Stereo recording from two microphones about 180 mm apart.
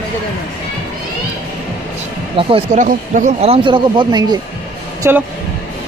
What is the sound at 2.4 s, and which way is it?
Speech, 30° right (ahead or behind).